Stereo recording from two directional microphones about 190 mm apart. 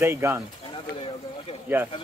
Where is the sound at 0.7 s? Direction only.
30° left (ahead or behind).